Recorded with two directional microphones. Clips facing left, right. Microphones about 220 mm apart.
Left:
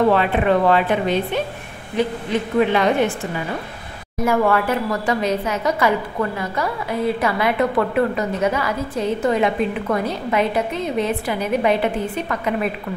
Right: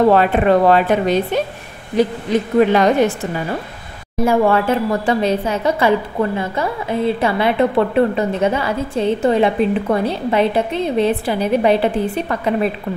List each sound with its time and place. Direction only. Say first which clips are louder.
0.1 s a woman's voice: right 4 dB; 40° right (ahead or behind)
4.2 s a woman's voice: right 3 dB; 30° right (ahead or behind)